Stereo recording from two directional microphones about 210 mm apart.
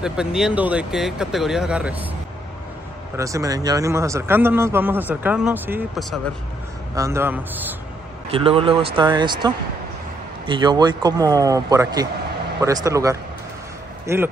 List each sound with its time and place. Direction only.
0.0 s speech: 5° right (ahead or behind)
3.2 s a man's voice: 15° right (ahead or behind); by 6.3 s centre (ahead or behind)
7.0 s a man's voice: 10° right (ahead or behind)
8.3 s a man's voice: 25° right (ahead or behind); by 14.3 s 10° right (ahead or behind)